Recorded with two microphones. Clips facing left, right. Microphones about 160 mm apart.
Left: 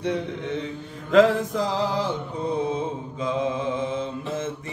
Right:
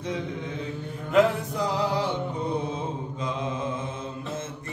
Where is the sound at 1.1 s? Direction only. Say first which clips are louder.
Left 4 dB; 90° left.